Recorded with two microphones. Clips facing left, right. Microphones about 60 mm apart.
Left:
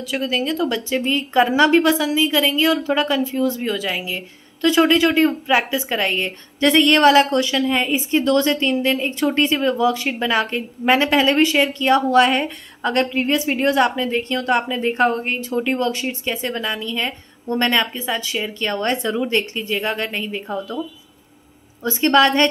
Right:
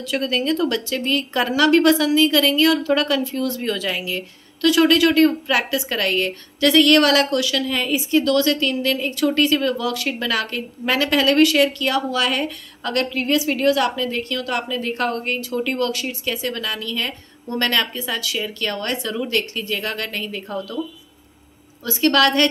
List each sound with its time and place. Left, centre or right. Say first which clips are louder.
0.1 s a woman's voice: right 1 dB; centre
13.7 s a woman's voice: left 2 dB; left
21.8 s a woman's voice: left 2 dB; left